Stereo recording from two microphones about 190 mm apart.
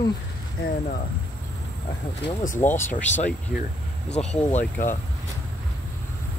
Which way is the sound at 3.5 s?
50° left (ahead or behind).